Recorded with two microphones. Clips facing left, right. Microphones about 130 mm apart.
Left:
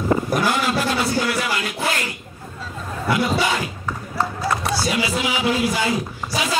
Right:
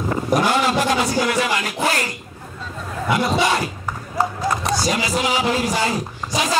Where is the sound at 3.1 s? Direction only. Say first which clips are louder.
Even; 20° right (ahead or behind).